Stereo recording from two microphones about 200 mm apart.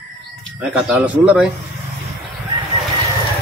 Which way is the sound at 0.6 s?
5° right (ahead or behind).